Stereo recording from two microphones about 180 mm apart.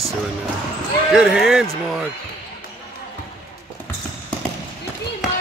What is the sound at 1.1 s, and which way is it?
Speech, 5° right (ahead or behind).